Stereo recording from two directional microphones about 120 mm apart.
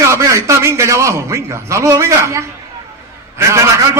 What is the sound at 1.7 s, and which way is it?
Speech, 25° right (ahead or behind).